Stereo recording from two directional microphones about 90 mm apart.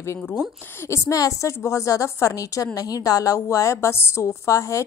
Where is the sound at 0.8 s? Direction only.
35° left (ahead or behind).